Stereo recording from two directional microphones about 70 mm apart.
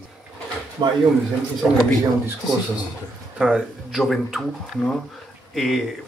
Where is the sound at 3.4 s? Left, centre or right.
Centre.